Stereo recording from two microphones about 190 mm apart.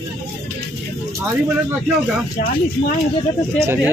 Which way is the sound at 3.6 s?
10° right (ahead or behind).